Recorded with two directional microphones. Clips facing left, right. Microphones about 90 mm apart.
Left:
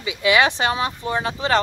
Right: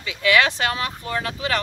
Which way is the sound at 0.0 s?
20° left (ahead or behind).